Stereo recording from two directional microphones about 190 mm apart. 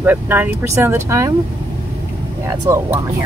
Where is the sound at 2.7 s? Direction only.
15° right (ahead or behind).